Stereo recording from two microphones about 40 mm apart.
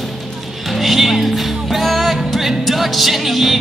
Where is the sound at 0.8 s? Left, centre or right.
Centre.